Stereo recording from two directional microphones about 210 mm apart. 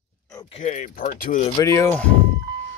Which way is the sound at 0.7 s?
35° left (ahead or behind).